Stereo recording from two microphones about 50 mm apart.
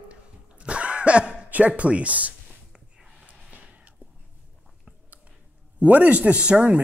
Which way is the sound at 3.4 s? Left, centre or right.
Right.